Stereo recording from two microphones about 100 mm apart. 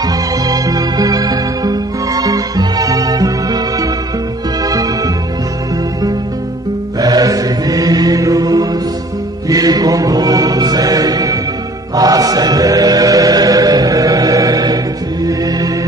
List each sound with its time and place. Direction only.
0.0 s music: 40° right (ahead or behind)
7.0 s mantra: 40° right (ahead or behind)
9.5 s music: 40° right (ahead or behind)
11.9 s chant: 40° right (ahead or behind)
15.2 s music: 35° right (ahead or behind)